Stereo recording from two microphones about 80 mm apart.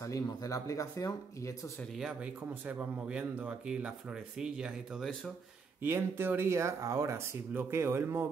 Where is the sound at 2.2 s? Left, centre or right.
Centre.